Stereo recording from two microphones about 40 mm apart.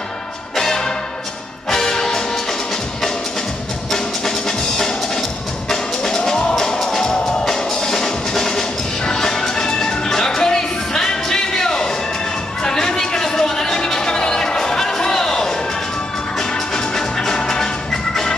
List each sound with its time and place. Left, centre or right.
0.6 s music: centre
12.6 s a sound: centre
16.3 s music: centre